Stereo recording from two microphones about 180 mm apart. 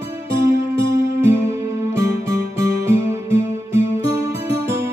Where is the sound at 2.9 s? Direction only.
15° right (ahead or behind).